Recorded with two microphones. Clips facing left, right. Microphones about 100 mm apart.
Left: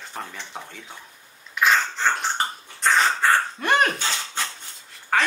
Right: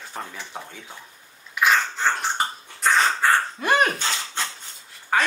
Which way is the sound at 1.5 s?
5° right (ahead or behind).